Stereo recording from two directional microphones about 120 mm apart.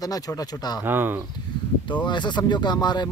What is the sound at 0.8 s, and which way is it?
Speech, 15° right (ahead or behind).